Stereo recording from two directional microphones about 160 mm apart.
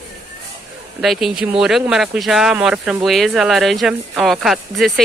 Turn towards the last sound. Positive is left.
turn(degrees=0)  # may be behind; listen again after turning